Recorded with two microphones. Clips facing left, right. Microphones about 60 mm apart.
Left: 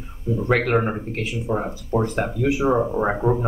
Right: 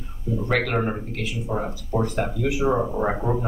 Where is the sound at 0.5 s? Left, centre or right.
Left.